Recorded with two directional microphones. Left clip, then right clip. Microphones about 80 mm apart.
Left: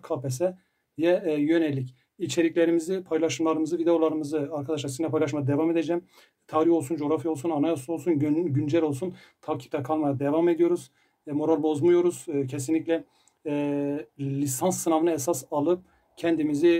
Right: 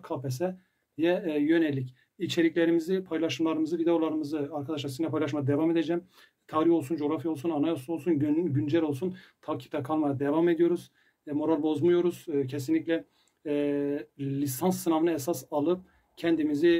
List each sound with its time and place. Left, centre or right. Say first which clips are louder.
0.0 s speech: left 5 dB; left